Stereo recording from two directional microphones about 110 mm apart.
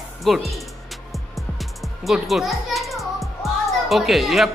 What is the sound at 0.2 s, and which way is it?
A child's voice, centre (ahead or behind).